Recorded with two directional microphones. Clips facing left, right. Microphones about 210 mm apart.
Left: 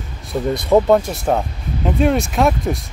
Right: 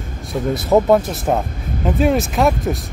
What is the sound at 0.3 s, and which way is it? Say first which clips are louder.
Speech: left 1 dB; centre (ahead or behind).